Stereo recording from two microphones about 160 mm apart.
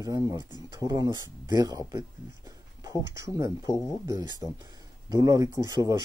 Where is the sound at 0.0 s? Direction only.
20° right (ahead or behind).